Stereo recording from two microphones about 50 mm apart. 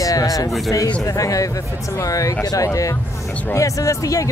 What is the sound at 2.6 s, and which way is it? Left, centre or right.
Speech, left.